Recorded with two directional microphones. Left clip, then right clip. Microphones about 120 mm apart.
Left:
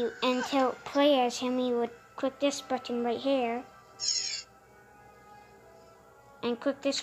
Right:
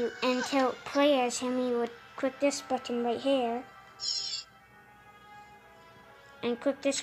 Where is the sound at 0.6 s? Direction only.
15° left (ahead or behind).